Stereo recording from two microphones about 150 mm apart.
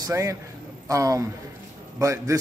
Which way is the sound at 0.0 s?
20° right (ahead or behind).